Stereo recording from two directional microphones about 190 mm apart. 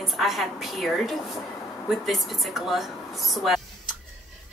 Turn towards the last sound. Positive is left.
turn(degrees=0)  # may be behind; listen again after turning